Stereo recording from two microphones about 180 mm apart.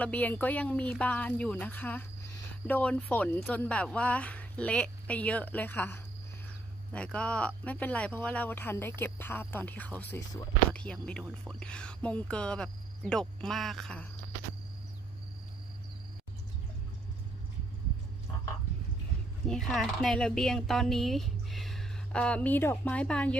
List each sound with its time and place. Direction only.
0.0 s speech: 10° left (ahead or behind)
19.4 s speech: centre (ahead or behind)